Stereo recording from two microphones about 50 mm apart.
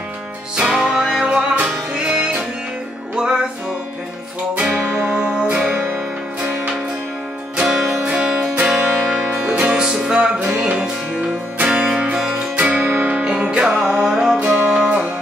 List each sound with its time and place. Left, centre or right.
0.6 s music: centre
5.0 s music: right
5.4 s music: centre
7.6 s music: centre
8.0 s music: right
12.8 s music: right
13.1 s music: centre